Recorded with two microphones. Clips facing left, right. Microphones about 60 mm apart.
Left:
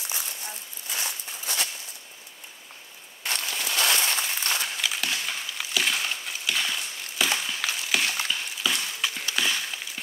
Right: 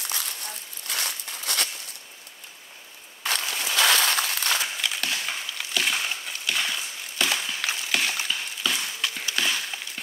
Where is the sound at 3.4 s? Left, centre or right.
Centre.